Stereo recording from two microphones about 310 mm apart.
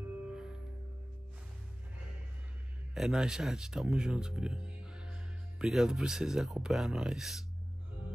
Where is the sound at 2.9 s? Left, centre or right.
Centre.